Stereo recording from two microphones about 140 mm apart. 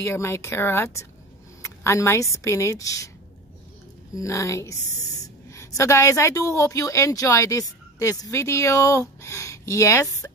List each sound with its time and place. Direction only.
0.0 s speech: 20° left (ahead or behind)
4.1 s speech: 20° left (ahead or behind)